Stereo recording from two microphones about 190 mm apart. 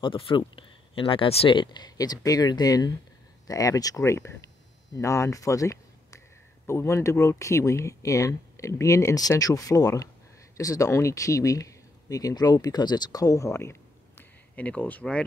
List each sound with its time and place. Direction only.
0.0 s speech: 25° left (ahead or behind); by 15.2 s 5° left (ahead or behind)